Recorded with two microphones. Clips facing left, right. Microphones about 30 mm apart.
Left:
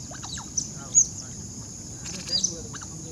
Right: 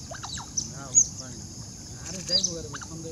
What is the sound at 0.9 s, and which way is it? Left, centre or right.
Boat, centre.